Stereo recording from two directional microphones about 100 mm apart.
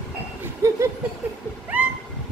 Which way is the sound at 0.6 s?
30° right (ahead or behind).